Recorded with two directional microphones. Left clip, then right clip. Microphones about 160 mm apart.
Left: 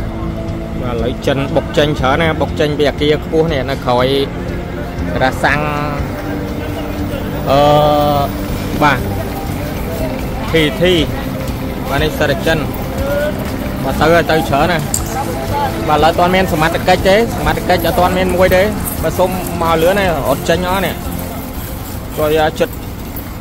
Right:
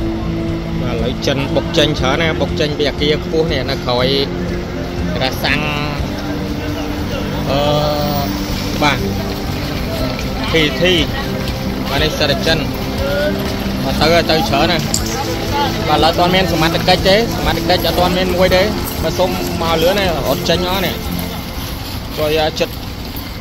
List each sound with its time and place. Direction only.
1.0 s speech: 5° left (ahead or behind)
2.6 s speech: 15° left (ahead or behind)
5.5 s speech: 5° left (ahead or behind)
7.5 s mantra: 35° left (ahead or behind)
10.5 s speech: 5° left (ahead or behind)
13.9 s speech: 5° left (ahead or behind)
15.9 s speech: centre (ahead or behind)
22.2 s speech: 5° left (ahead or behind)